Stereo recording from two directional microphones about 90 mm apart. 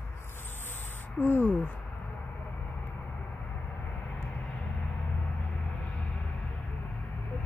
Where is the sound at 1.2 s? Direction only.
20° left (ahead or behind).